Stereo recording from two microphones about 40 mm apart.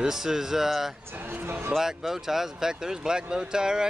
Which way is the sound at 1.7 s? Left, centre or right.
Centre.